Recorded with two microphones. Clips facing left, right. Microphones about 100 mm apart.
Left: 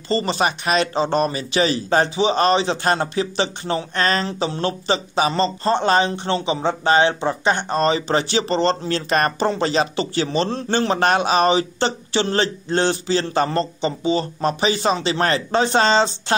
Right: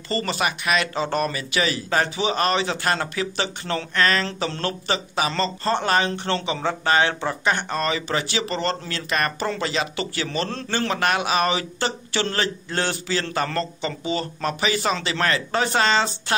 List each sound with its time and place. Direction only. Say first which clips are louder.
0.1 s a man's voice: left 4 dB; 25° left (ahead or behind)
4.3 s a man's voice: left 4 dB; 20° left (ahead or behind)